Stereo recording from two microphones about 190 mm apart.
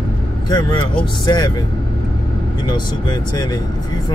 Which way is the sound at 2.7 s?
20° left (ahead or behind).